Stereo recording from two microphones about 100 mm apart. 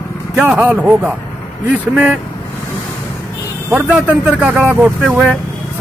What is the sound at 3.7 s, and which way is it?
Speech, 15° right (ahead or behind).